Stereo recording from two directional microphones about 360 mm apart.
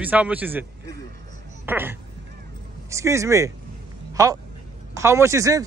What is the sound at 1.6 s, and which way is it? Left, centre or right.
Speech, centre.